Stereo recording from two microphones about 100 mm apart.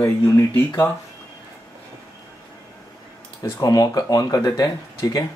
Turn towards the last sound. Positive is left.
turn(degrees=40)  # may be behind; listen again after turning